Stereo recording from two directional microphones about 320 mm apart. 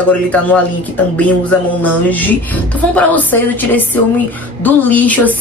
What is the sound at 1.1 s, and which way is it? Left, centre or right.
Music, centre.